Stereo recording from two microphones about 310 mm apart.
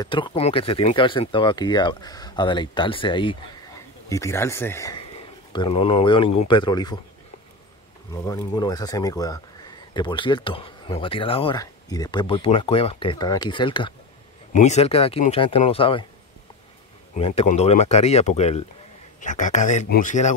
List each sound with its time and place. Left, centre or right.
0.0 s speech: centre
8.1 s speech: centre
17.2 s speech: centre